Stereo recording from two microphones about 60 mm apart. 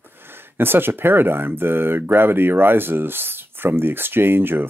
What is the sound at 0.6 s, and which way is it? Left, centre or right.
Speech, right.